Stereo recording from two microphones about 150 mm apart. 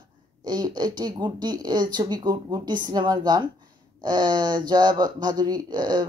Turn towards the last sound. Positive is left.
turn(degrees=-25)  # may be behind; listen again after turning